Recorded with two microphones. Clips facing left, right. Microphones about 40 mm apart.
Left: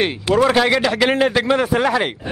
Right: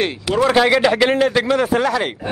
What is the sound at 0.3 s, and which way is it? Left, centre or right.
A man's voice, centre.